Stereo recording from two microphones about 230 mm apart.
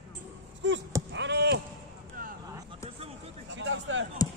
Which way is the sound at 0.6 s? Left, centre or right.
Right.